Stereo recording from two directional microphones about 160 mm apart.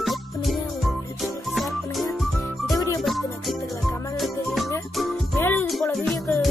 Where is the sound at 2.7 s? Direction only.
20° left (ahead or behind).